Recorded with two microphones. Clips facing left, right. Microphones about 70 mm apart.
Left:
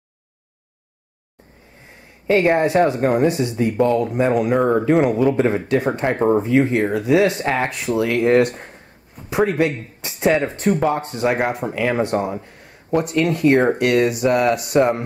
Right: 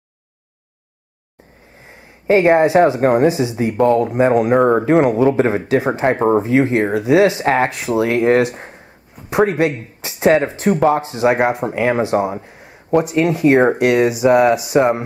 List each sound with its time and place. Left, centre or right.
1.9 s speech: centre
11.7 s speech: centre
12.0 s speech: centre